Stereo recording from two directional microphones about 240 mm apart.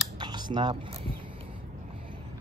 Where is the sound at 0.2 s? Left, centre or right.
Centre.